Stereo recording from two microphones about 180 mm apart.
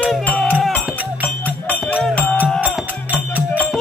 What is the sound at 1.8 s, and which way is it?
Music, 5° left (ahead or behind).